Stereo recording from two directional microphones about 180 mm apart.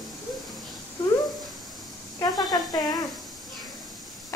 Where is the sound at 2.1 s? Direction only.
20° left (ahead or behind).